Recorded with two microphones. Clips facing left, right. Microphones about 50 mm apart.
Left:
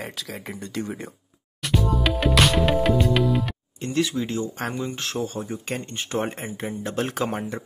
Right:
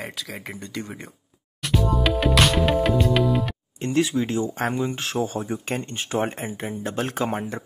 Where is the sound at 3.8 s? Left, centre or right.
Right.